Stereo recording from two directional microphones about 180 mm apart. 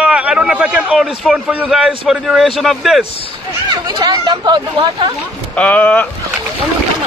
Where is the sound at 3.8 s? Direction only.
20° right (ahead or behind).